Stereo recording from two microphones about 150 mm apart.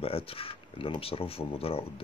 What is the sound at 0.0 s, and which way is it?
Speech, 40° left (ahead or behind).